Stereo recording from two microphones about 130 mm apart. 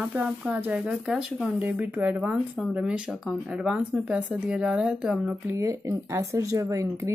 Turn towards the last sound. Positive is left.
turn(degrees=-25)  # may be behind; listen again after turning